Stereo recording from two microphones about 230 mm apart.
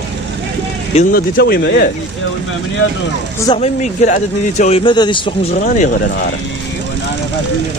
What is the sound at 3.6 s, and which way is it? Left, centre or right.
Speech, left.